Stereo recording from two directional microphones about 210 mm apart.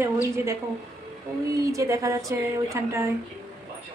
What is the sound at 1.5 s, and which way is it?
Speech, 15° right (ahead or behind).